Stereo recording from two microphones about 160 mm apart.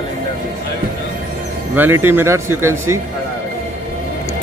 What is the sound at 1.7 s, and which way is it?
Speech, 15° right (ahead or behind).